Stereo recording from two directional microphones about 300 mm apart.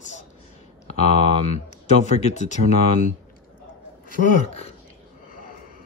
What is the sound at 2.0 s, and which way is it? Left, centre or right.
Speech, left.